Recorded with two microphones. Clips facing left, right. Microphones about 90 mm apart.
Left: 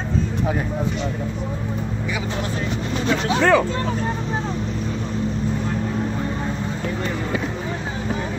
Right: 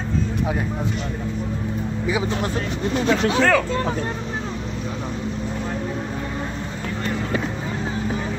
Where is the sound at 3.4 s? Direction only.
20° left (ahead or behind).